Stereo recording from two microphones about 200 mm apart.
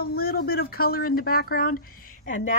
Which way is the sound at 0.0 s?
50° left (ahead or behind).